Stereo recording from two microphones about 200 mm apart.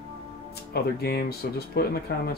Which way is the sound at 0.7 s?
50° left (ahead or behind).